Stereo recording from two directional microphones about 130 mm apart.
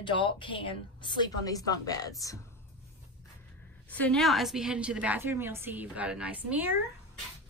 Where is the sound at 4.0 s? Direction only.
5° left (ahead or behind); by 6.7 s 10° right (ahead or behind).